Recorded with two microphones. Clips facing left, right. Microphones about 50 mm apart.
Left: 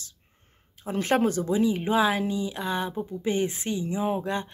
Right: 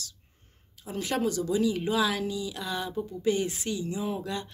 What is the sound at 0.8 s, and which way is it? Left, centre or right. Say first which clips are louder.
Speech: left 5 dB; left.